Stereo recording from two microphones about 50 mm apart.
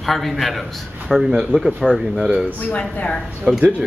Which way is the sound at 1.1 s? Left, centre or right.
Centre.